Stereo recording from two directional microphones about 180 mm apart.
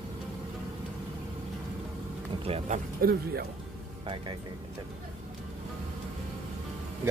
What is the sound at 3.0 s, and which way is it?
Speech, 60° right (ahead or behind).